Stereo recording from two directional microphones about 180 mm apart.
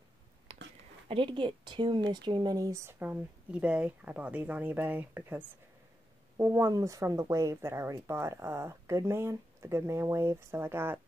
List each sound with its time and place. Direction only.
1.0 s speech: 30° right (ahead or behind); by 11.0 s 10° right (ahead or behind)